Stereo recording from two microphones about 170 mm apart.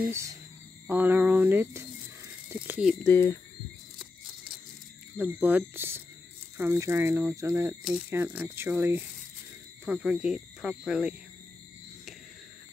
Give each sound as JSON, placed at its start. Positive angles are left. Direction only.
{"t": 0.1, "sound": "speech", "side_deg": -15}
{"t": 2.9, "sound": "speech", "side_deg": 10}
{"t": 5.1, "sound": "speech", "side_deg": -10}